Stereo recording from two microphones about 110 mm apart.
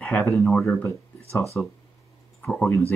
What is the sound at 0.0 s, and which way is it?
Speech, 5° left (ahead or behind).